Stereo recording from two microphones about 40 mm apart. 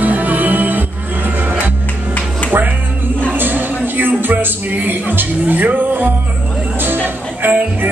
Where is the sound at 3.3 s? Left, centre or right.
Right.